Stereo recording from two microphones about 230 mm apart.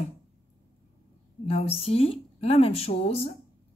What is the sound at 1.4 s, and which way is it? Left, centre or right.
A woman's voice, left.